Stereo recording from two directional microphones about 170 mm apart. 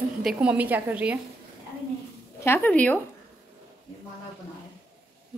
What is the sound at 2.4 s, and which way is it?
Speech, 10° left (ahead or behind).